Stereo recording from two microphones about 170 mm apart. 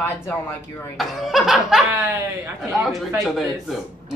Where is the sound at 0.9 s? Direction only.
Centre (ahead or behind).